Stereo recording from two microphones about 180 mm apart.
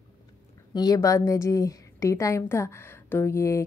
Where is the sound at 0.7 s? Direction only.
20° left (ahead or behind).